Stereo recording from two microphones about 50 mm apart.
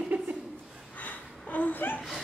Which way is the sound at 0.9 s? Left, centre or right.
Left.